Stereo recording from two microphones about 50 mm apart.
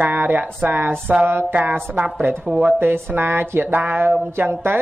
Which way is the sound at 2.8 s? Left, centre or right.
Right.